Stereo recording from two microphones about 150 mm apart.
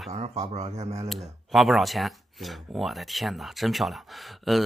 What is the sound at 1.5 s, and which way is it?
Speech, centre (ahead or behind).